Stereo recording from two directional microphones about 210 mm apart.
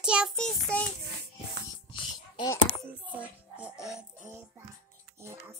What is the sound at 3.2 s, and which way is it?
Music, 5° right (ahead or behind).